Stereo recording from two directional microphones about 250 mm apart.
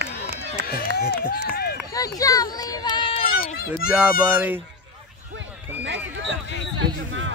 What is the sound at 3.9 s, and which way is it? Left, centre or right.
Speech, centre.